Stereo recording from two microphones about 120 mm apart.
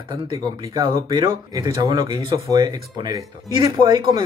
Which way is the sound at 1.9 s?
40° right (ahead or behind).